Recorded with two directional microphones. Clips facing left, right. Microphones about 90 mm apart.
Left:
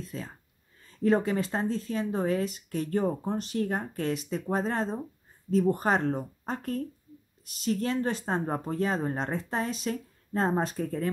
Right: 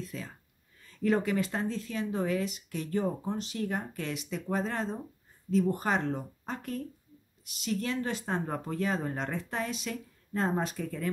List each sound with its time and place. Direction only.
0.1 s speech: 35° left (ahead or behind)